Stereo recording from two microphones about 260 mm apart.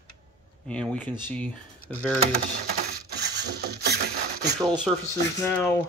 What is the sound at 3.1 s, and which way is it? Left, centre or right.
Mechanisms, right.